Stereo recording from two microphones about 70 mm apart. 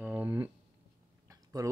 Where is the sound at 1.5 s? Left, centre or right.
Right.